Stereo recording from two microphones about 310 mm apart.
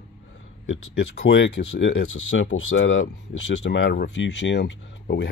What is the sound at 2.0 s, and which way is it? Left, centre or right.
Speech, left.